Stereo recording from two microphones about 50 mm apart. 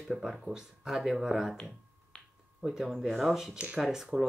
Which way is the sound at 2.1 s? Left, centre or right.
Centre.